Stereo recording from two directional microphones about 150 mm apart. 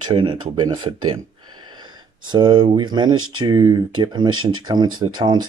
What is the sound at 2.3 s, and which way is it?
Speech, 30° right (ahead or behind).